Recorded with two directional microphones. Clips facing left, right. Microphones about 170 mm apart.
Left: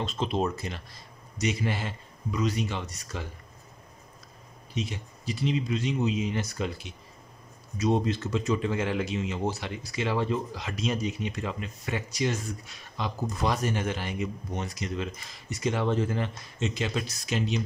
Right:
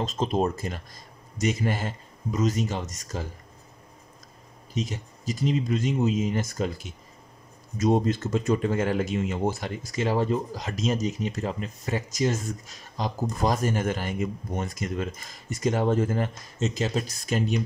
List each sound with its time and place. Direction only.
0.0 s speech: 40° right (ahead or behind)
4.7 s speech: 40° right (ahead or behind)